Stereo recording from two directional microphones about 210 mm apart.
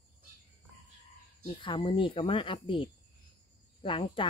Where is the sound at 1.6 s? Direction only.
25° left (ahead or behind).